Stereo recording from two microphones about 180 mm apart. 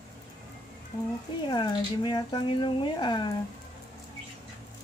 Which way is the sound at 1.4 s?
25° left (ahead or behind).